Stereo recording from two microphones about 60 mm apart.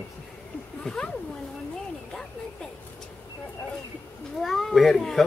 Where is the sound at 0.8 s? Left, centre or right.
Centre.